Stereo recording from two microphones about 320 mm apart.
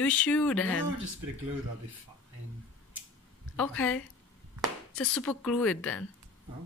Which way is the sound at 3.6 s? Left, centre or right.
Centre.